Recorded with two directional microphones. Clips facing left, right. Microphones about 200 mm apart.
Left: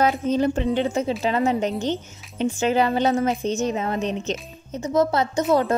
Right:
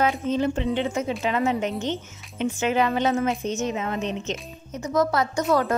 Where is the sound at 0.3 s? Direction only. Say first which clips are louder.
Left 3 dB; 40° left (ahead or behind).